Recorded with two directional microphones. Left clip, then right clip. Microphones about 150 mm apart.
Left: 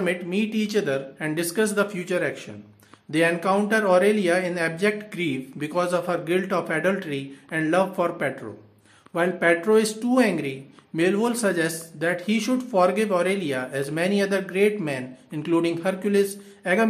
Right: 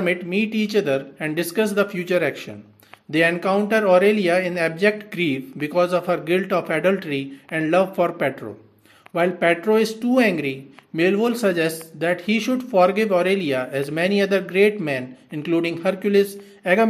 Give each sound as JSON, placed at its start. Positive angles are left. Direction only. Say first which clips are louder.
{"t": 0.0, "sound": "speech", "louder": "right 3 dB", "side_deg": -20}
{"t": 2.1, "sound": "speech", "louder": "right 5 dB", "side_deg": -30}
{"t": 3.1, "sound": "speech", "louder": "right 2 dB", "side_deg": -15}
{"t": 9.1, "sound": "speech", "louder": "right 2 dB", "side_deg": -15}